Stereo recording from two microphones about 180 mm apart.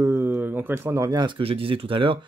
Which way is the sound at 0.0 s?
10° right (ahead or behind).